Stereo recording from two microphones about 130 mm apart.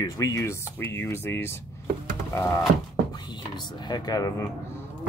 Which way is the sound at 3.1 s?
35° left (ahead or behind).